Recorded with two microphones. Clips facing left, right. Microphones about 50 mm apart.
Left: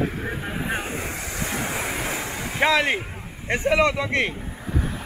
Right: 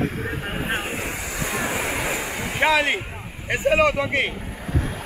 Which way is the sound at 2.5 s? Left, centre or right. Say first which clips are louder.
Even; centre.